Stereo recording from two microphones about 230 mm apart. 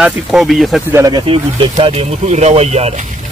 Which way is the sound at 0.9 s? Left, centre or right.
Centre.